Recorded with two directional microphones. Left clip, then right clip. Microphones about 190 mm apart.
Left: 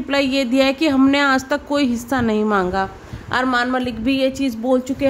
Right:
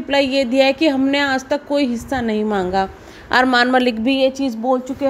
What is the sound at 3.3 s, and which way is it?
Speech, 25° right (ahead or behind).